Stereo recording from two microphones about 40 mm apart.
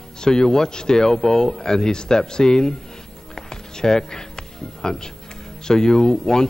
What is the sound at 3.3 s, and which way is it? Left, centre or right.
Music, centre.